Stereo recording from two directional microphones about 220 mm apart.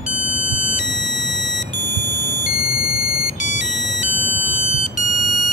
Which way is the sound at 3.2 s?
50° right (ahead or behind).